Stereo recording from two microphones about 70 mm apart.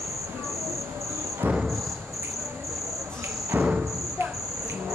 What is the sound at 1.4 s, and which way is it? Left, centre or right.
Cricket, right.